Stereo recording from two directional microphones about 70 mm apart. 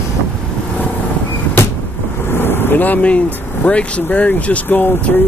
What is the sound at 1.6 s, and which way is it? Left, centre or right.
Vehicle, left.